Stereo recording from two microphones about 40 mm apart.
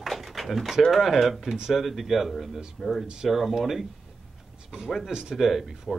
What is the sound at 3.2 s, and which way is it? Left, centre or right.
Speech, centre.